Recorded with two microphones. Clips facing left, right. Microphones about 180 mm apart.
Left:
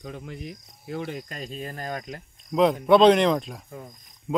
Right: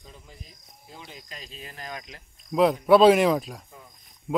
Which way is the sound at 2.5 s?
Centre (ahead or behind).